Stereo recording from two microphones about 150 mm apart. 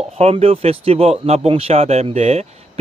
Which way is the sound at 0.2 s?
40° right (ahead or behind).